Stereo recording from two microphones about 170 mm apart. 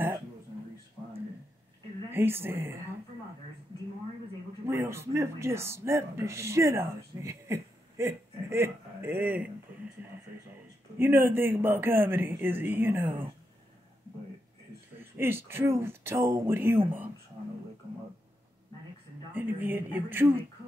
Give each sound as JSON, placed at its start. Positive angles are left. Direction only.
{"t": 2.0, "sound": "speech", "side_deg": -15}
{"t": 4.6, "sound": "speech", "side_deg": -15}
{"t": 11.0, "sound": "speech", "side_deg": -15}
{"t": 15.0, "sound": "speech", "side_deg": -15}
{"t": 19.3, "sound": "a sound", "side_deg": -10}